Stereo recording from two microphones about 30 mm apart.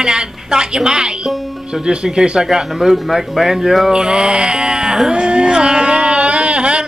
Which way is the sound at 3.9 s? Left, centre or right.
Right.